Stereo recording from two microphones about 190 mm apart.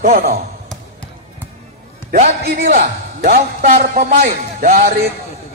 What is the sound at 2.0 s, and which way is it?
Speech, 50° right (ahead or behind).